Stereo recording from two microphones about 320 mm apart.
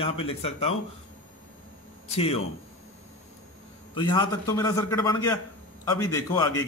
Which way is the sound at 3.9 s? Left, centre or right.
Centre.